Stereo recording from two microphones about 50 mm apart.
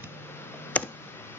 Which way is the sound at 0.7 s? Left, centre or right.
Left.